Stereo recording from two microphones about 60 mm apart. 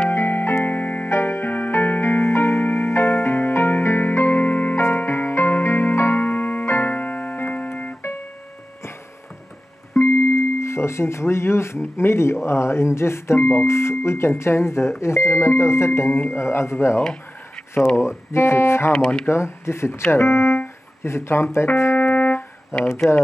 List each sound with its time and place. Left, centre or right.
0.1 s music: left
1.1 s music: left
4.7 s music: left
6.6 s keyboard: left
9.9 s a sound: left
12.4 s speech: left
18.9 s speech: centre
19.2 s speech: left
21.7 s music: left
22.1 s music: left
22.7 s a sound: left